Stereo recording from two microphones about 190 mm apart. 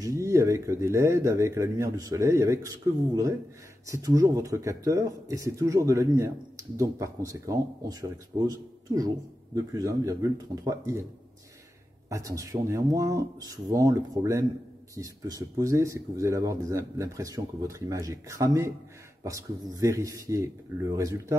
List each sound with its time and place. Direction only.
0.0 s speech: 15° right (ahead or behind)
3.8 s speech: 15° right (ahead or behind)
12.1 s speech: 15° right (ahead or behind)